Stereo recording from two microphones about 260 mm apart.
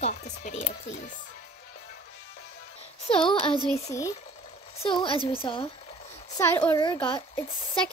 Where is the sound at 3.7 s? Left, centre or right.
Centre.